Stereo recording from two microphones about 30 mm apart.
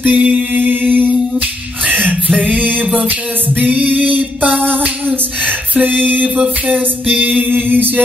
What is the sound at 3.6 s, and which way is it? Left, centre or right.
Music, right.